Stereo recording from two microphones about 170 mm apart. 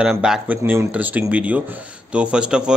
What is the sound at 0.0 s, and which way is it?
Speech, 5° right (ahead or behind).